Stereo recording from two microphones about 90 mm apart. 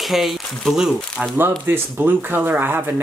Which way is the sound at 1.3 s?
25° right (ahead or behind).